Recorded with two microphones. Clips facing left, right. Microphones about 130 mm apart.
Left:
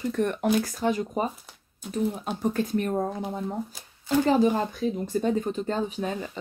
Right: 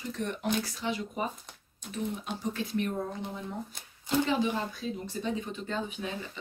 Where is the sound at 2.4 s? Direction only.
45° left (ahead or behind).